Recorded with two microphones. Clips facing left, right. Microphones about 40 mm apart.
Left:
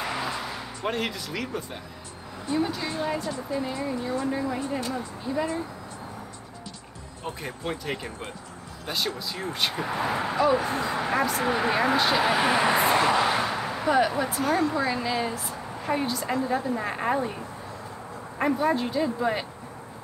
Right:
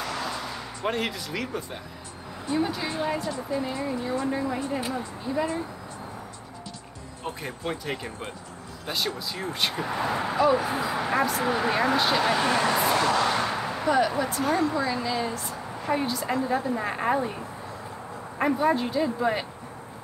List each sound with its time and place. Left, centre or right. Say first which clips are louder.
0.0 s a sound: left 1 dB; centre
2.5 s speech: even; centre
4.6 s speech: even; centre
4.9 s speech: even; centre
7.2 s speech: even; centre
13.5 s speech: even; centre